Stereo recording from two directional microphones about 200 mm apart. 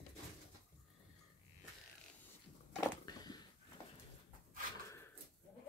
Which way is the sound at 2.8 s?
20° left (ahead or behind).